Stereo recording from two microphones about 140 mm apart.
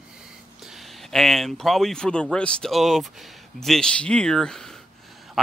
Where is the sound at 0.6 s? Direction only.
Centre (ahead or behind).